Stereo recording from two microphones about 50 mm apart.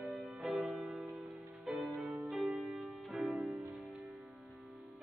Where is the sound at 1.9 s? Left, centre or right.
Centre.